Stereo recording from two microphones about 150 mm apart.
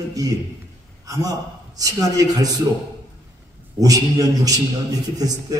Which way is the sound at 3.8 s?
25° right (ahead or behind).